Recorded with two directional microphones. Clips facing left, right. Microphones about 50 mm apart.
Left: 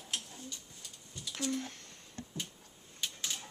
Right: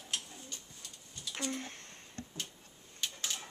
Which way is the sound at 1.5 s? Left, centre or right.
Right.